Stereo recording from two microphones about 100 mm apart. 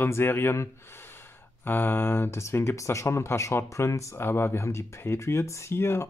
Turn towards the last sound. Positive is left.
turn(degrees=25)  # may be behind; listen again after turning